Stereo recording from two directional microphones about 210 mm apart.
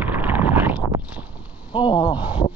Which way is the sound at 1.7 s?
20° left (ahead or behind).